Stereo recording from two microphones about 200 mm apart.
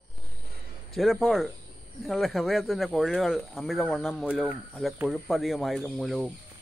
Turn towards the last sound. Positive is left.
turn(degrees=0)  # may be behind; listen again after turning